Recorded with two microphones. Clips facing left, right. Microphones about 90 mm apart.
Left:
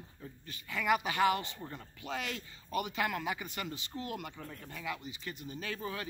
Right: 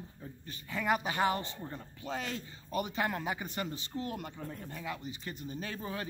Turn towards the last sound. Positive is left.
turn(degrees=-30)  # may be behind; listen again after turning